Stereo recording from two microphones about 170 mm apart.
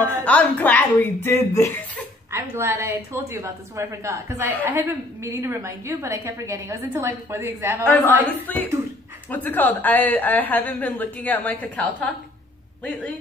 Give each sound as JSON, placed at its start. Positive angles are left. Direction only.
{"t": 0.0, "sound": "a woman's voice", "side_deg": 10}
{"t": 2.3, "sound": "a woman's voice", "side_deg": -15}
{"t": 7.8, "sound": "a woman's voice", "side_deg": 10}